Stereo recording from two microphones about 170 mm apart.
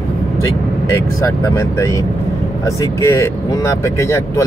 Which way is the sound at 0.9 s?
15° left (ahead or behind).